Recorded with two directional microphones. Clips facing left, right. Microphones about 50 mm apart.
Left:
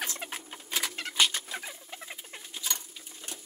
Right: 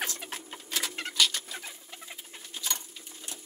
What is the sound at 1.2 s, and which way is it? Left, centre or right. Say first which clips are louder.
Rodents: left 1 dB; left.